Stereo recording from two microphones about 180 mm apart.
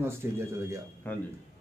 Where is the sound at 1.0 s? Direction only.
10° left (ahead or behind).